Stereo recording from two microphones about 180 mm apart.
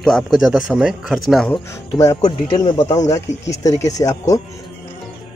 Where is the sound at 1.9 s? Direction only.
20° left (ahead or behind).